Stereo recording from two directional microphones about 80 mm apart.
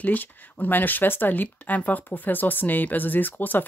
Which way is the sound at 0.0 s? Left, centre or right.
Left.